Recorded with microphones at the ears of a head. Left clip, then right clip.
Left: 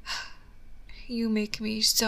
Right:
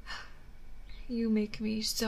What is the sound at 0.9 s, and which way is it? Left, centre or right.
A woman's voice, left.